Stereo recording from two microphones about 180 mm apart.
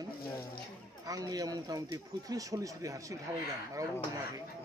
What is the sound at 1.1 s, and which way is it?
Speech, 20° right (ahead or behind).